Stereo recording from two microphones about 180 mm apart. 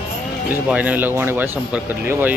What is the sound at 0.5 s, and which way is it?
Speech, 10° right (ahead or behind).